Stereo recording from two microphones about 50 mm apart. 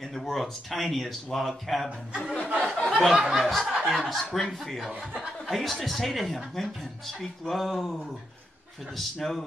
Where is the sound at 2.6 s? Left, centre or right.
Centre.